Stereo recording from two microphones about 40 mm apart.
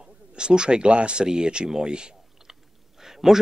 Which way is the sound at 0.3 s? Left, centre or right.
Right.